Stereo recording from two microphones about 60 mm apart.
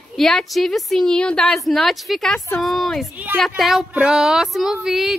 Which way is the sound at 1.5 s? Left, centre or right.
Centre.